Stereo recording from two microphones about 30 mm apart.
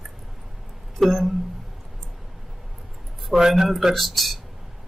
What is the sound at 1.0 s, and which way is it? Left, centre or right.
Speech, centre.